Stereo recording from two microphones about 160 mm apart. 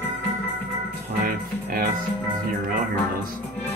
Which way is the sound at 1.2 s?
65° right (ahead or behind).